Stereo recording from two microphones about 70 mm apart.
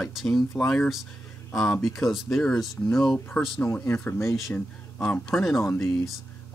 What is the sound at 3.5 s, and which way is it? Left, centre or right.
Speech, centre.